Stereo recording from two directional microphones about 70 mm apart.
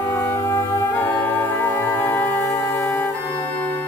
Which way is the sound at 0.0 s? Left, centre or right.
Left.